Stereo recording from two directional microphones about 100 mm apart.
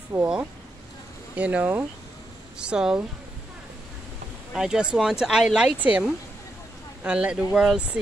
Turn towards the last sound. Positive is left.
turn(degrees=-5)  # may be behind; listen again after turning